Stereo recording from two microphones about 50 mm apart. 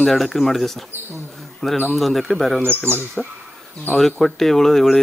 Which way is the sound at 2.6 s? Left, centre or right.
Left.